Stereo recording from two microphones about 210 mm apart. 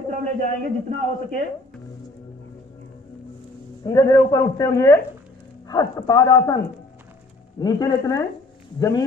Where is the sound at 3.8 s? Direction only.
15° left (ahead or behind).